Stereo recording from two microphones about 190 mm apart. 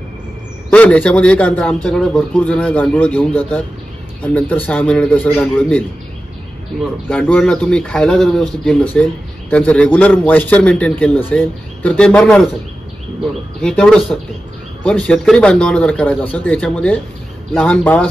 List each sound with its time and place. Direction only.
0.7 s speech: 10° left (ahead or behind)
7.1 s speech: 5° left (ahead or behind)
13.6 s speech: 5° left (ahead or behind)